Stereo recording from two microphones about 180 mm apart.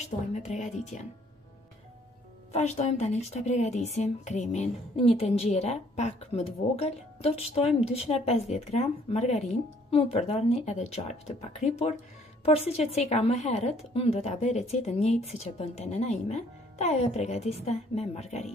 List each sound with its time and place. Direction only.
0.0 s speech: 40° left (ahead or behind)
2.5 s speech: 40° left (ahead or behind)